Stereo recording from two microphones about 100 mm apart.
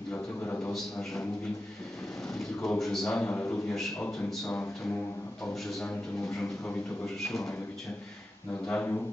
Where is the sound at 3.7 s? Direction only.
5° left (ahead or behind).